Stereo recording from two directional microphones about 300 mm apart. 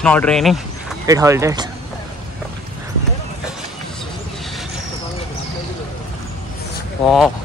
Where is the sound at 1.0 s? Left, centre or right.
Centre.